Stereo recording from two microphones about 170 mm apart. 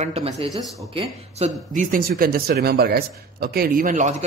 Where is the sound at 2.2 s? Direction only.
65° right (ahead or behind).